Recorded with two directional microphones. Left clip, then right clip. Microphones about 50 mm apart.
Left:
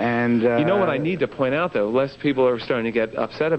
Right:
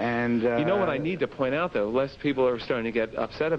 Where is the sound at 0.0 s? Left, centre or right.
Left.